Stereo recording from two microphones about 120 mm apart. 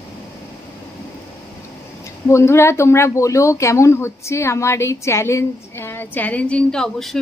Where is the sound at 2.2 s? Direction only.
20° left (ahead or behind).